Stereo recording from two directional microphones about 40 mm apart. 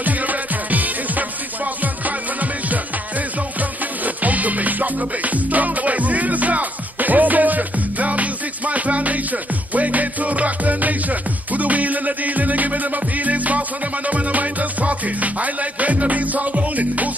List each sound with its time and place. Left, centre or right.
0.0 s music: right